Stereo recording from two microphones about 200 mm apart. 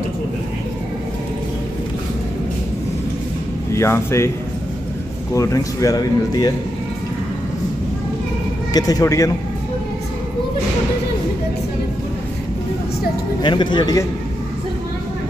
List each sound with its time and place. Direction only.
3.7 s speech: 15° left (ahead or behind)
5.3 s speech: 15° left (ahead or behind)
8.7 s speech: 20° left (ahead or behind)
13.4 s speech: 25° left (ahead or behind)